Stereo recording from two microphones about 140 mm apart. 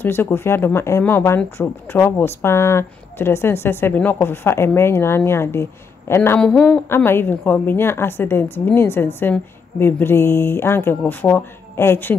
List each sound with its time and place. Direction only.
0.0 s speech: 15° left (ahead or behind)